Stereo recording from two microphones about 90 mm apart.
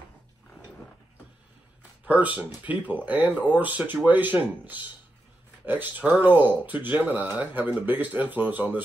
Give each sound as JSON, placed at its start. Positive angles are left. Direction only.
{"t": 1.8, "sound": "speech", "side_deg": -15}